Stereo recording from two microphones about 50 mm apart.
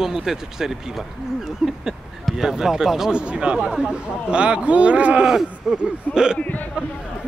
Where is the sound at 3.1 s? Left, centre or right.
Right.